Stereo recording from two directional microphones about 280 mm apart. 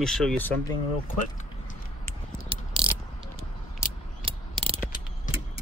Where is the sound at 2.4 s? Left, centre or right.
Centre.